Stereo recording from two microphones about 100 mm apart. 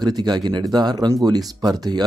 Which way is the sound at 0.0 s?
45° right (ahead or behind).